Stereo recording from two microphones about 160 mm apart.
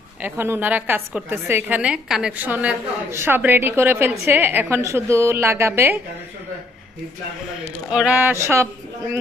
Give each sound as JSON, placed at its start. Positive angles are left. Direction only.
{"t": 0.2, "sound": "a woman's voice", "side_deg": -15}
{"t": 7.9, "sound": "a woman's voice", "side_deg": -10}